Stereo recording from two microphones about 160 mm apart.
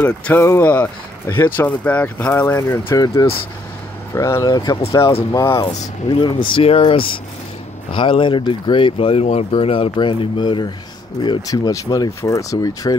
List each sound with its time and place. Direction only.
0.0 s speech: 10° left (ahead or behind)
6.0 s speech: 30° left (ahead or behind)